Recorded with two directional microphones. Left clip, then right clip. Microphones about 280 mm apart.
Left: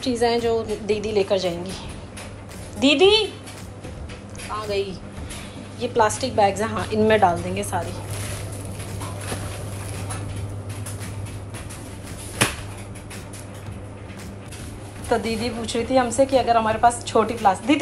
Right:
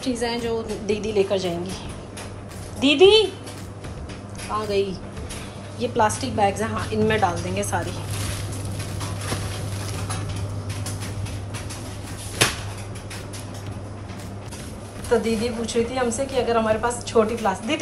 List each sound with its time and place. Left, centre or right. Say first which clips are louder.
0.0 s a woman's voice: left 5 dB; centre
2.8 s a woman's voice: right 1 dB; centre
4.6 s a woman's voice: right 2 dB; centre
15.2 s a woman's voice: right 2 dB; centre